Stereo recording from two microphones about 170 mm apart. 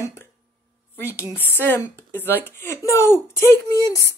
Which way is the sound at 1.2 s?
10° right (ahead or behind).